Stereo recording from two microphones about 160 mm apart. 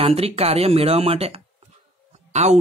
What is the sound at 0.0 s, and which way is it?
Speech, 40° right (ahead or behind).